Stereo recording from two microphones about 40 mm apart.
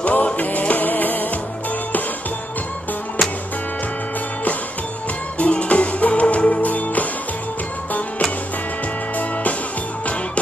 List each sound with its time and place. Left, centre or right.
0.0 s music: left
5.4 s music: left